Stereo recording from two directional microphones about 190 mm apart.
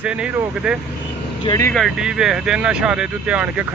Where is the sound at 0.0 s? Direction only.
5° right (ahead or behind).